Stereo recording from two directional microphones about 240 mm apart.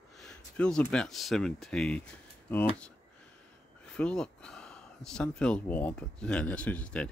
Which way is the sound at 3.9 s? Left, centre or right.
Centre.